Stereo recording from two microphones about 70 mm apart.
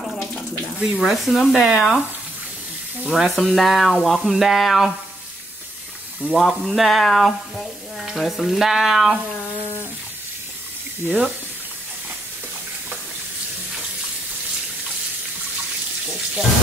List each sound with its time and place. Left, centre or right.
0.7 s sizzle: centre
3.1 s sizzle: centre
6.3 s sizzle: centre
11.1 s speech: centre